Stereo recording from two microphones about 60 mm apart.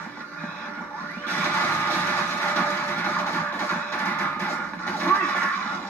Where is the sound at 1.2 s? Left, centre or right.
Left.